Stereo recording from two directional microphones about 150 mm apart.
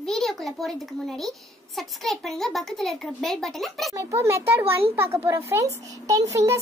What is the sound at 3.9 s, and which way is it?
A child's voice, 20° right (ahead or behind).